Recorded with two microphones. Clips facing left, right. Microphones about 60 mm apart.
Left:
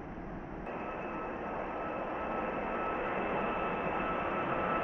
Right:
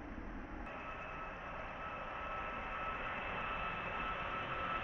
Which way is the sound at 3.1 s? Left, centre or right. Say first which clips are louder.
Left 8 dB; centre.